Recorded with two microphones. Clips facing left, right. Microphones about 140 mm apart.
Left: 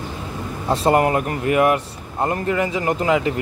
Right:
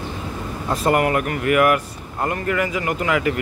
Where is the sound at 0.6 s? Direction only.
30° left (ahead or behind).